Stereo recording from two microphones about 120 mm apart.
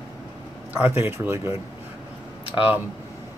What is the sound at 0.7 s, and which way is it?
Speech, 15° right (ahead or behind).